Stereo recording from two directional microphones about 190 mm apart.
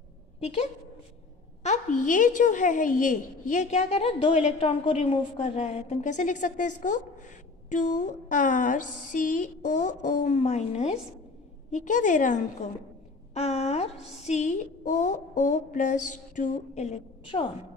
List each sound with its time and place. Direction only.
1.6 s a woman's voice: 40° left (ahead or behind)